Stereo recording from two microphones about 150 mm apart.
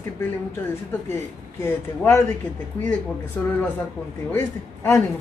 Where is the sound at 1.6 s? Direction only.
20° left (ahead or behind).